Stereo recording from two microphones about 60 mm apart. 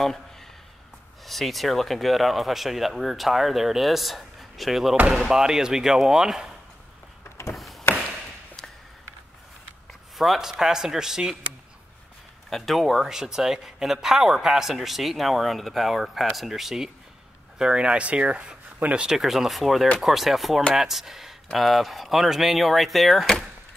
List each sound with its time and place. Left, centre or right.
0.0 s a sound: centre
1.2 s speech: centre
7.5 s a sound: centre
10.1 s speech: centre
12.4 s speech: centre
18.9 s speech: centre